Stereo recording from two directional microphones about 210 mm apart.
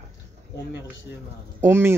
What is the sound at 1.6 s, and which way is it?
Speech, 10° right (ahead or behind).